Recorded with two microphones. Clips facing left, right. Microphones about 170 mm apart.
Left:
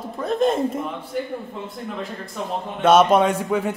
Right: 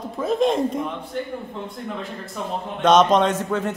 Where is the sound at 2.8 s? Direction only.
10° left (ahead or behind).